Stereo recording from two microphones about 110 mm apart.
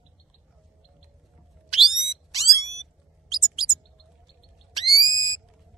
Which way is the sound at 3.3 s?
5° right (ahead or behind).